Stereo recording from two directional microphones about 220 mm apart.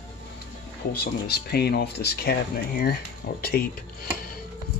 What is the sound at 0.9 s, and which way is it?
Speech, 45° left (ahead or behind).